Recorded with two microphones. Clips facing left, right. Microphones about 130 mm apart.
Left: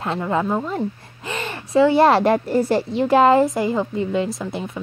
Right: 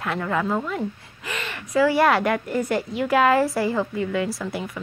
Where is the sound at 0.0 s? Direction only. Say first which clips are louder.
Left 3 dB; 25° left (ahead or behind).